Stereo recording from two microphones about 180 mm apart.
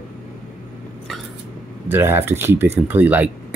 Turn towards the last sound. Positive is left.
turn(degrees=-10)  # may be behind; listen again after turning